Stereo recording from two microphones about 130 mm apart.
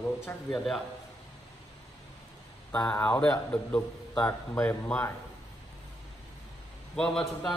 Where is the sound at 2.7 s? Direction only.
10° left (ahead or behind).